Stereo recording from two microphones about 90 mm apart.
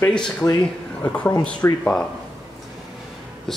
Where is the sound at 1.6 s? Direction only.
25° left (ahead or behind).